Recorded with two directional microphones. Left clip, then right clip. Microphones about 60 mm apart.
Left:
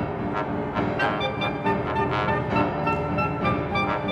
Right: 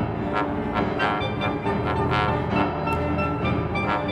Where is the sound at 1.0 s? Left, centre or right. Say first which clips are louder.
Even; right.